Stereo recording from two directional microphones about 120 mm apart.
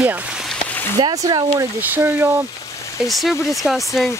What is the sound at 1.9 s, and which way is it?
Speech, 20° right (ahead or behind).